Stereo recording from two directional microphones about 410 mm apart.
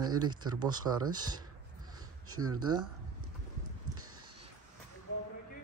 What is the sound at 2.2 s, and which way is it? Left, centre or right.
Speech, right.